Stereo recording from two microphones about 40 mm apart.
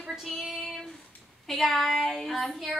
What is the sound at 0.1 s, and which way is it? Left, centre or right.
A woman's voice, centre.